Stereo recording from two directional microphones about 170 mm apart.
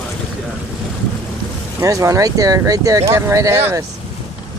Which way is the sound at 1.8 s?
20° right (ahead or behind).